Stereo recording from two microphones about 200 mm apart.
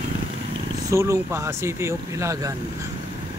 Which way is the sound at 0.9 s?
15° right (ahead or behind).